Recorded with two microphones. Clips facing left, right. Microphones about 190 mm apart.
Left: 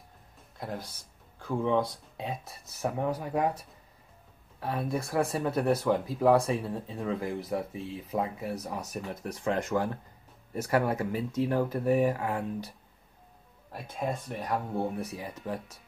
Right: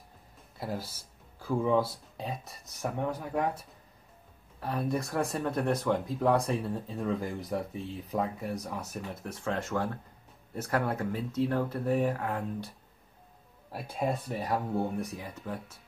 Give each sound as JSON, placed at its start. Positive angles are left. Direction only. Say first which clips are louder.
{"t": 0.6, "sound": "speech", "louder": "right 1 dB", "side_deg": -5}
{"t": 4.6, "sound": "speech", "louder": "even", "side_deg": 0}
{"t": 9.4, "sound": "speech", "louder": "left 3 dB", "side_deg": 15}
{"t": 13.7, "sound": "speech", "louder": "right 2 dB", "side_deg": -5}